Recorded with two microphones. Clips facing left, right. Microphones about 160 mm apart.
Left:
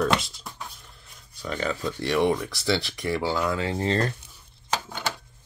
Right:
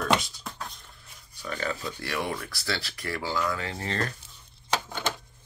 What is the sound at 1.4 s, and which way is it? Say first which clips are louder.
Speech: left 4 dB; 20° left (ahead or behind).